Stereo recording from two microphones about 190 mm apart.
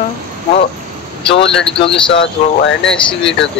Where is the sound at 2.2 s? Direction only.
75° left (ahead or behind).